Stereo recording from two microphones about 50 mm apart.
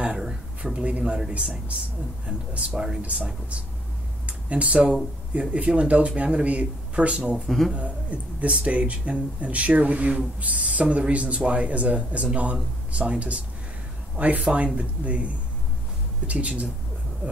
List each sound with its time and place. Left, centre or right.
0.0 s a sound: centre
3.0 s speech: right
4.3 s a sound: right
5.4 s speech: right
7.4 s a man's voice: centre
7.7 s speech: right